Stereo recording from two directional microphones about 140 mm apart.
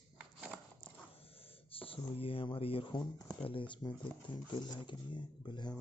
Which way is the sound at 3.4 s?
40° left (ahead or behind).